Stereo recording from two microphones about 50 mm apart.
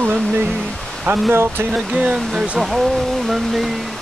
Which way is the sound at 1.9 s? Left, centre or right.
Right.